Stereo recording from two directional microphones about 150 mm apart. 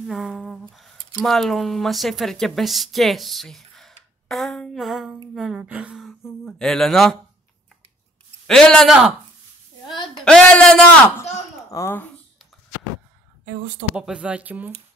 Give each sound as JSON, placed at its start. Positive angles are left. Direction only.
{"t": 0.1, "sound": "speech", "side_deg": 0}
{"t": 4.3, "sound": "a sound", "side_deg": 0}
{"t": 8.5, "sound": "speech", "side_deg": 5}
{"t": 10.0, "sound": "a sound", "side_deg": 5}
{"t": 11.7, "sound": "speech", "side_deg": 15}
{"t": 13.9, "sound": "speech", "side_deg": -5}